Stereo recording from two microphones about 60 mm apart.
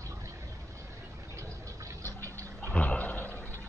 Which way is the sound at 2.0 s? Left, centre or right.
Right.